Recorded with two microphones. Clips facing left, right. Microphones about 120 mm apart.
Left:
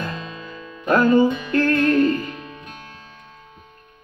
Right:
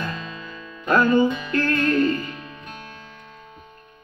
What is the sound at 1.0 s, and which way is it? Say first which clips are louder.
Music: left 3 dB; 40° left (ahead or behind).